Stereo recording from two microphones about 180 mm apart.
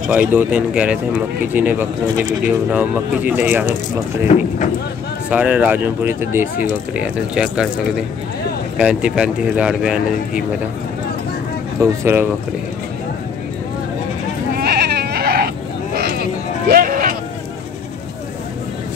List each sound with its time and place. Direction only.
0.1 s speech: 10° right (ahead or behind)
5.3 s speech: 5° right (ahead or behind)
8.7 s speech: 5° right (ahead or behind)
11.8 s speech: 15° right (ahead or behind)
14.6 s goat: 65° right (ahead or behind)